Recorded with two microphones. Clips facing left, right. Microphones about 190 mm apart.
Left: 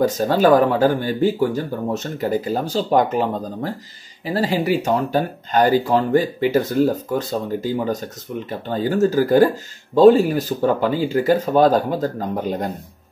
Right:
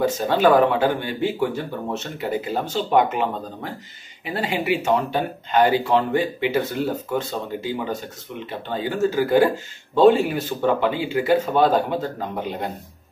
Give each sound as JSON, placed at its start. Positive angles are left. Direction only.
{"t": 0.0, "sound": "speech", "side_deg": 40}